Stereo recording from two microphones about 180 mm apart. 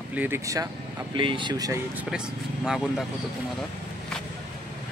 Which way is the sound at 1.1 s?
30° right (ahead or behind).